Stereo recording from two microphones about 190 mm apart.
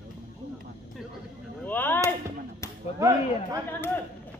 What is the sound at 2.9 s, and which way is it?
Speech, 15° right (ahead or behind).